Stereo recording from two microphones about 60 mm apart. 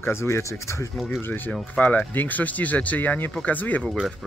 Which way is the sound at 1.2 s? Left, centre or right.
Left.